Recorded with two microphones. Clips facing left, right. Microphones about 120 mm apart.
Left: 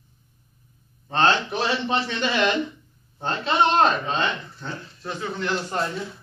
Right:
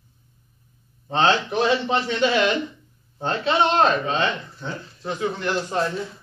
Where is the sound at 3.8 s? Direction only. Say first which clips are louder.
Right 1 dB; 5° right (ahead or behind).